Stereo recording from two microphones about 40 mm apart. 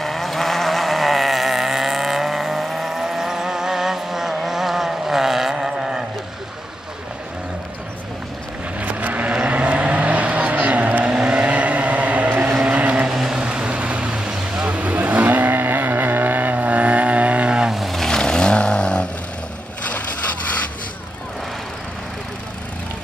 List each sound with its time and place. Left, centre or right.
0.0 s vehicle: centre
8.7 s vehicle: right
11.1 s vehicle: right
13.1 s vehicle: centre
13.4 s vehicle: right
14.7 s vehicle: right
15.6 s vehicle: right
17.7 s vehicle: centre
18.0 s vehicle: centre